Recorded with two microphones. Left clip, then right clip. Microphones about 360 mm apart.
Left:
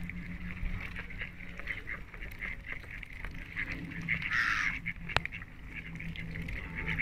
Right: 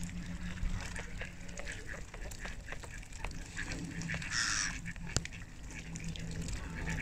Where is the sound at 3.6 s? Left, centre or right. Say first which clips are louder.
Left 4 dB; right.